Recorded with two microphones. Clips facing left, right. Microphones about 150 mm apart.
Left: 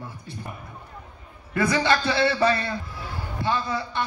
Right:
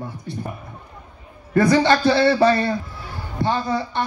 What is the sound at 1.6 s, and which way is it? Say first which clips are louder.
Speech: right 6 dB; 30° right (ahead or behind).